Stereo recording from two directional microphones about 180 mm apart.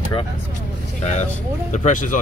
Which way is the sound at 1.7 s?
45° left (ahead or behind).